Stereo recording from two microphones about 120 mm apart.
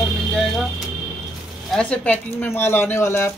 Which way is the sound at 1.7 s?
10° left (ahead or behind).